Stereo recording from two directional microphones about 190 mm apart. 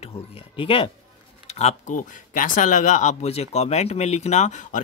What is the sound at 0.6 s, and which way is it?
Speech, 30° left (ahead or behind).